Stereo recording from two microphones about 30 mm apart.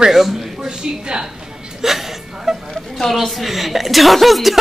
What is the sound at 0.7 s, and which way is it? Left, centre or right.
Speech, right.